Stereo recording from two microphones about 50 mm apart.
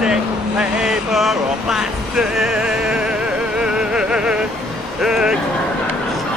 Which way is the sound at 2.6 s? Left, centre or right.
Centre.